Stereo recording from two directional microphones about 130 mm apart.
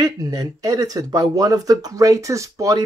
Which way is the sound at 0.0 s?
30° right (ahead or behind).